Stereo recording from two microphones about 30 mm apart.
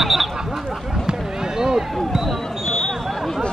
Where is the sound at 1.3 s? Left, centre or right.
Centre.